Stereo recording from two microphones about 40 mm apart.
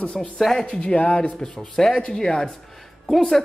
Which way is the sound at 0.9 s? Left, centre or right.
Left.